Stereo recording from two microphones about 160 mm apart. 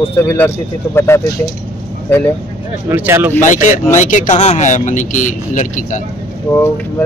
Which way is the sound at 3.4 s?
50° left (ahead or behind).